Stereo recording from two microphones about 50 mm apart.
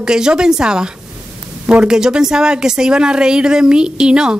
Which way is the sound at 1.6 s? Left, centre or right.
Right.